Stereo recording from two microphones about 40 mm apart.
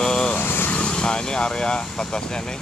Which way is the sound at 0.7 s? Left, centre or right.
Left.